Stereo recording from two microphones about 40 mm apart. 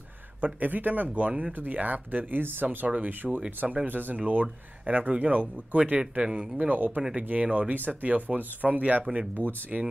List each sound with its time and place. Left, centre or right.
0.4 s speech: right
3.3 s speech: right
3.8 s speech: right
5.1 s speech: right
9.7 s speech: right